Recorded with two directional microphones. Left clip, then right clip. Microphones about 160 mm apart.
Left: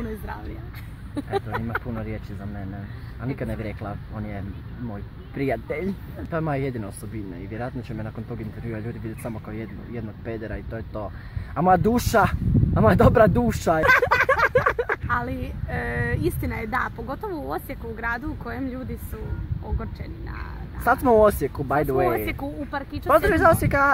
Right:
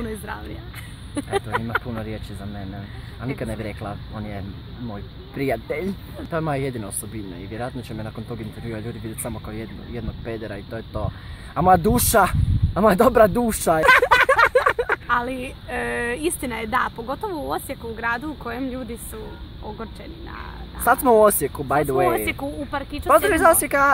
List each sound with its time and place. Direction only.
1.1 s speech: 15° right (ahead or behind)
1.9 s speech: 5° right (ahead or behind)
3.3 s speech: centre (ahead or behind)
14.1 s a sound: 15° right (ahead or behind)
15.1 s a woman's voice: 30° right (ahead or behind)
15.7 s speech: 15° right (ahead or behind)
16.3 s speech: 30° right (ahead or behind)
16.7 s speech: 10° right (ahead or behind)
17.6 s speech: 25° right (ahead or behind)
20.8 s speech: centre (ahead or behind)
22.3 s speech: 15° right (ahead or behind)
23.0 s speech: centre (ahead or behind)